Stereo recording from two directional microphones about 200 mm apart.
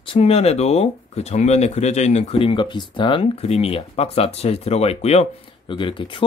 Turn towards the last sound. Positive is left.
turn(degrees=25)  # may be behind; listen again after turning